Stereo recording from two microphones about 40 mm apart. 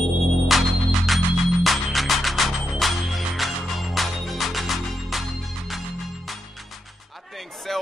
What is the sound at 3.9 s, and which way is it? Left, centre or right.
Music, centre.